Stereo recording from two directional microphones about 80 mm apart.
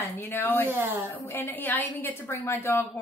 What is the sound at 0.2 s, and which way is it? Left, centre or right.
Speech, left.